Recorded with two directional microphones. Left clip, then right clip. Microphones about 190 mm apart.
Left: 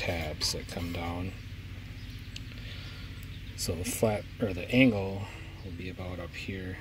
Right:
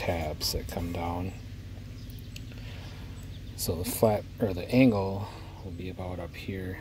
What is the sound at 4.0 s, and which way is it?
Speech, 10° right (ahead or behind).